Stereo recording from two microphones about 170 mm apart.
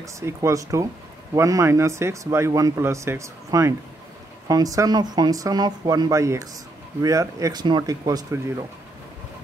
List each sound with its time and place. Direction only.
0.0 s speech: 20° right (ahead or behind)